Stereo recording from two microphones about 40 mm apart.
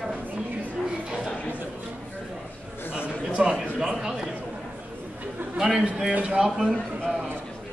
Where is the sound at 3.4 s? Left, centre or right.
Centre.